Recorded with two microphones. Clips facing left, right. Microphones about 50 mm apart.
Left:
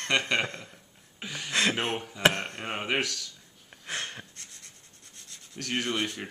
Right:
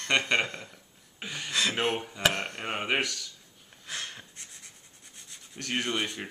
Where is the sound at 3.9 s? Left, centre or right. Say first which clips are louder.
Left 3 dB; left.